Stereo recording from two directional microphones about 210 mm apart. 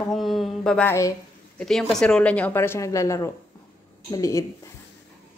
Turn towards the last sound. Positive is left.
turn(degrees=15)  # may be behind; listen again after turning